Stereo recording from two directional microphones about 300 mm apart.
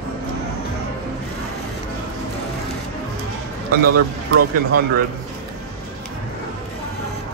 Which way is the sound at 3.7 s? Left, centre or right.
Right.